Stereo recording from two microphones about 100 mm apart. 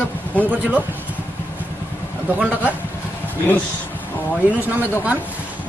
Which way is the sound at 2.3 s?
15° right (ahead or behind).